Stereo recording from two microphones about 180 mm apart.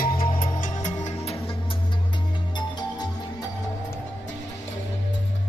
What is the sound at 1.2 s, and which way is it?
Music, 35° left (ahead or behind).